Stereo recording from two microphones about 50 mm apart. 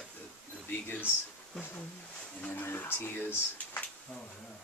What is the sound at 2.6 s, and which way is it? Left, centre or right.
Speech, left.